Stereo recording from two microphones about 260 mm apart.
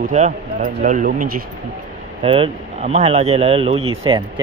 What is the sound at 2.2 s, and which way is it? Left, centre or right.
Speech, right.